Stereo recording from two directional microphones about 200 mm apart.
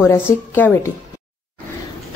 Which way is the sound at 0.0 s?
10° left (ahead or behind).